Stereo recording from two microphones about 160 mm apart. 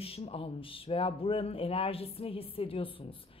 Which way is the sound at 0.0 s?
35° left (ahead or behind).